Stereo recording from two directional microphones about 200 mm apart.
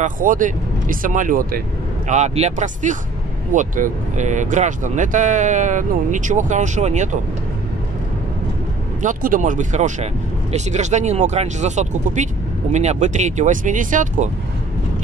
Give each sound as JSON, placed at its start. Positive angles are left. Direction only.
{"t": 0.0, "sound": "speech", "side_deg": -40}
{"t": 9.0, "sound": "speech", "side_deg": -40}